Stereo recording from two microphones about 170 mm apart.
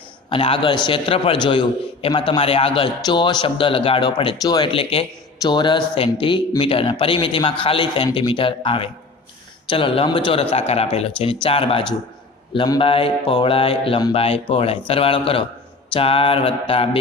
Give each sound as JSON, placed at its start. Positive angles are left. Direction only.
{"t": 0.3, "sound": "a man's voice", "side_deg": 30}